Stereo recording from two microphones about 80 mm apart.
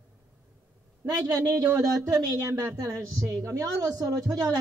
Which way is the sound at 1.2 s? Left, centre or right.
Right.